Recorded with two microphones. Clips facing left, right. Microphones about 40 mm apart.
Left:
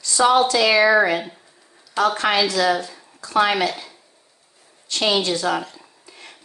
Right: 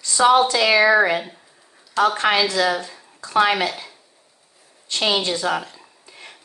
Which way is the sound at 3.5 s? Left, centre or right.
Centre.